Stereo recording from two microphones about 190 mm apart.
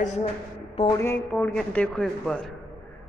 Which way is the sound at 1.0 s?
10° left (ahead or behind).